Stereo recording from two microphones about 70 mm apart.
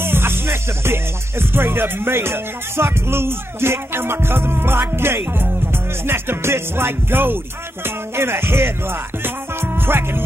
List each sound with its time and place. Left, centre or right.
0.0 s music: right
1.5 s music: right